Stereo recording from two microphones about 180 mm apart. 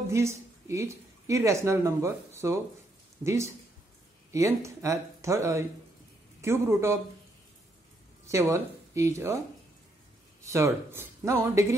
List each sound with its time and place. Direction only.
0.1 s a woman's voice: 15° right (ahead or behind)
8.3 s speech: 15° right (ahead or behind)
10.5 s speech: 15° right (ahead or behind)